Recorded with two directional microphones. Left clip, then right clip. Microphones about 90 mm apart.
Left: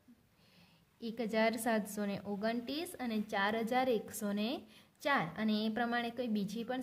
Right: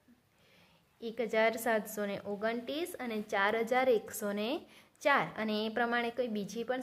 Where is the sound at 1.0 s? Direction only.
25° left (ahead or behind).